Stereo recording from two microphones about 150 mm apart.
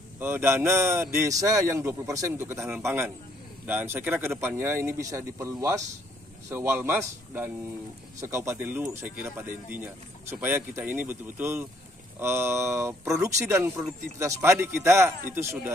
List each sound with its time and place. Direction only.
0.2 s a man's voice: 15° right (ahead or behind)
8.2 s speech: 20° right (ahead or behind)